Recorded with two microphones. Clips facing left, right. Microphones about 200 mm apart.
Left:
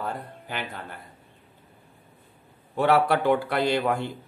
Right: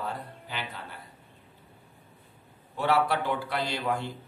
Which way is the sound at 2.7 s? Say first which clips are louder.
Left 5 dB; 60° left (ahead or behind).